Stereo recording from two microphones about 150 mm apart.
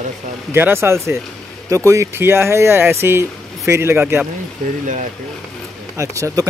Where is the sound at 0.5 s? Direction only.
15° right (ahead or behind).